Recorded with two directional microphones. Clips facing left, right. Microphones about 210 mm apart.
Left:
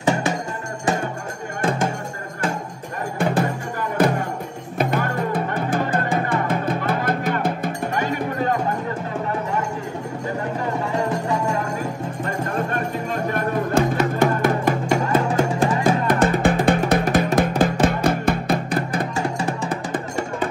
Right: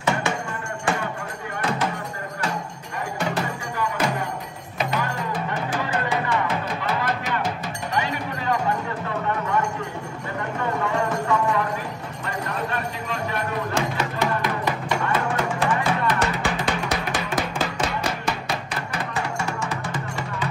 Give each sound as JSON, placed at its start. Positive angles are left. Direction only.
{"t": 0.0, "sound": "music", "side_deg": 40}
{"t": 1.6, "sound": "music", "side_deg": 50}
{"t": 3.2, "sound": "music", "side_deg": 55}
{"t": 4.7, "sound": "music", "side_deg": 55}
{"t": 11.0, "sound": "music", "side_deg": 35}
{"t": 12.3, "sound": "music", "side_deg": 50}
{"t": 19.3, "sound": "music", "side_deg": 35}
{"t": 19.7, "sound": "music", "side_deg": 55}